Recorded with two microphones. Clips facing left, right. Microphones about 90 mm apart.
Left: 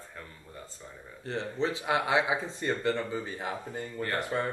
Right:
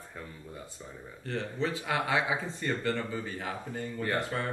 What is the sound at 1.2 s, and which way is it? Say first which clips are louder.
Speech: left 2 dB; 20° left (ahead or behind).